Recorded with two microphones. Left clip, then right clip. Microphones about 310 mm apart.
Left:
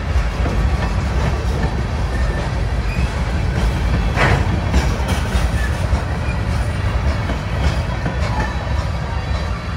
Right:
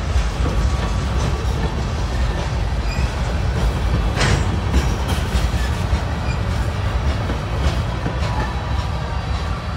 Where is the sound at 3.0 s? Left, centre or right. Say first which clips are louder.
Left 1 dB; left.